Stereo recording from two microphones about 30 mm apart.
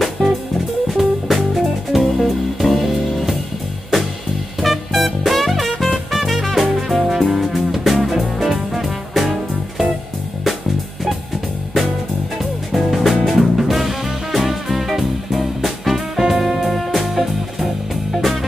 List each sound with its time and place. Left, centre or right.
0.2 s music: left
0.9 s music: centre
2.0 s music: centre
4.6 s music: centre
12.4 s music: centre